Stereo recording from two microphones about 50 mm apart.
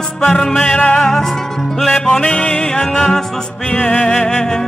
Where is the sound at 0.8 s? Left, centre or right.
Centre.